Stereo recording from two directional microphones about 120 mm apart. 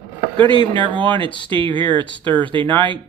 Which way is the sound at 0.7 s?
45° right (ahead or behind).